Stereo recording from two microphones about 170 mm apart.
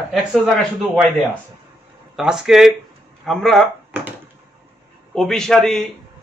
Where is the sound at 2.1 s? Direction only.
5° right (ahead or behind).